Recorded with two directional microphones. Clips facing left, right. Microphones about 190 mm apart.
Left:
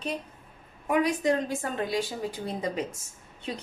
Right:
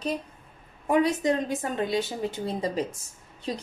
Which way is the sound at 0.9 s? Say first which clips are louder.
Right 2 dB; 25° right (ahead or behind).